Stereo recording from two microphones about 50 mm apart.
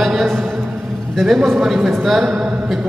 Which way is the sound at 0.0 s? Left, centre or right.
Centre.